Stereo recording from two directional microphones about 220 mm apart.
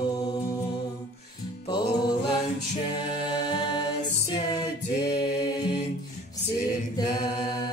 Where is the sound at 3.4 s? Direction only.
20° left (ahead or behind).